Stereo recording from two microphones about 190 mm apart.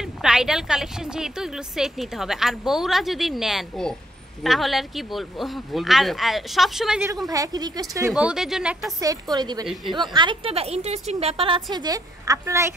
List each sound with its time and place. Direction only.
0.0 s a woman's voice: 5° right (ahead or behind)
7.2 s speech: 20° right (ahead or behind)
8.1 s a woman's voice: 5° right (ahead or behind)
9.0 s a woman's voice: 20° right (ahead or behind)